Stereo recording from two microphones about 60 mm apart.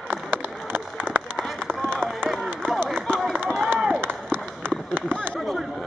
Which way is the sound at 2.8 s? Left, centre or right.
Centre.